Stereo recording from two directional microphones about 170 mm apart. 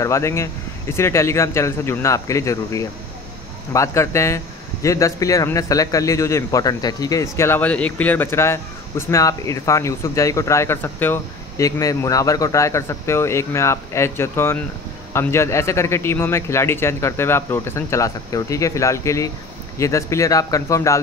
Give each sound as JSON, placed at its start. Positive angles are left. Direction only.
{"t": 0.0, "sound": "a man's voice", "side_deg": 15}